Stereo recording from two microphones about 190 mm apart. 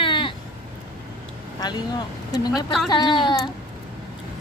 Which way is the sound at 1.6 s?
20° left (ahead or behind).